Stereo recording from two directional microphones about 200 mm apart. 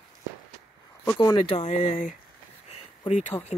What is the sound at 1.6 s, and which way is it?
Speech, 35° left (ahead or behind).